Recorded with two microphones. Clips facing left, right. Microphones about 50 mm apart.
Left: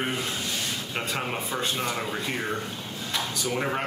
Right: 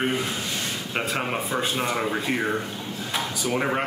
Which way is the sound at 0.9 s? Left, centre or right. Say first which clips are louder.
Right 5 dB; centre.